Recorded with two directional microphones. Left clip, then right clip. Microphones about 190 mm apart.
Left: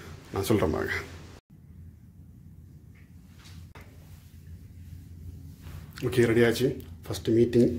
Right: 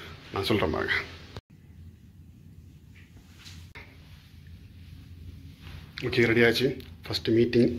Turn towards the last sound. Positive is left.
turn(degrees=20)  # may be behind; listen again after turning